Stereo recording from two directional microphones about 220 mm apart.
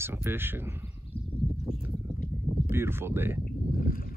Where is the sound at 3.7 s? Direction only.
40° left (ahead or behind).